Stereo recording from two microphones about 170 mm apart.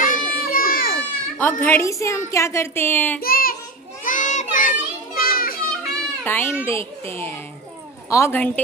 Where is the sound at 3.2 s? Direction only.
60° left (ahead or behind).